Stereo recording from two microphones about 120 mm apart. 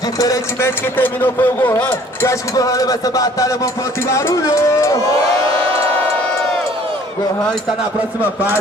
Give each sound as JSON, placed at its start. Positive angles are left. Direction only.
{"t": 0.2, "sound": "speech", "side_deg": 25}
{"t": 2.5, "sound": "a man's voice", "side_deg": 30}